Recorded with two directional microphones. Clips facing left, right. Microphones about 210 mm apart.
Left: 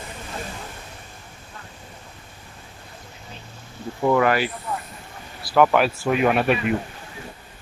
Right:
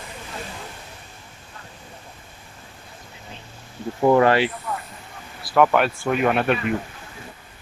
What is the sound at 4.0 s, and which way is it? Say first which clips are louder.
Speech: right 3 dB; 35° right (ahead or behind).